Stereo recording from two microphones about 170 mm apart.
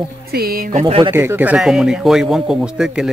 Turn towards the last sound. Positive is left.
turn(degrees=-5)  # may be behind; listen again after turning